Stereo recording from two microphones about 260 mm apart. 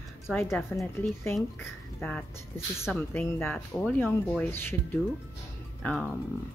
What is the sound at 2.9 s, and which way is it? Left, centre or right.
Speech, centre.